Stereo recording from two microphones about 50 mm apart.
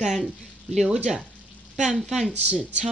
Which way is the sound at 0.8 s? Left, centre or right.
Centre.